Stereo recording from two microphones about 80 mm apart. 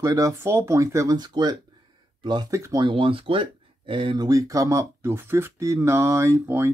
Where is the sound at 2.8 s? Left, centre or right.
Right.